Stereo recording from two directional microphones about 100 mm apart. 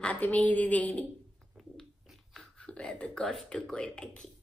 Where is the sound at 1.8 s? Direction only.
5° left (ahead or behind).